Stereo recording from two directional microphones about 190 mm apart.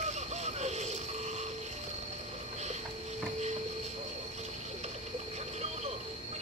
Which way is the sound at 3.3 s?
35° right (ahead or behind).